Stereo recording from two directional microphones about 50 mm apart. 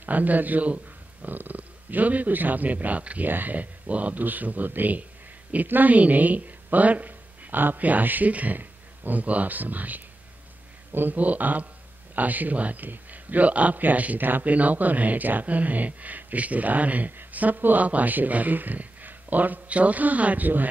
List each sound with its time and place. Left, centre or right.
0.0 s a man's voice: right